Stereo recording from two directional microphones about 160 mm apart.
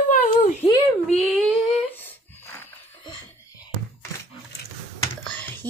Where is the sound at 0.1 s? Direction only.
55° left (ahead or behind).